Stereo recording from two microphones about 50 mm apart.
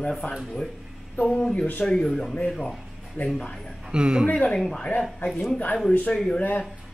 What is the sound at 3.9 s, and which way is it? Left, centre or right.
Speech, centre.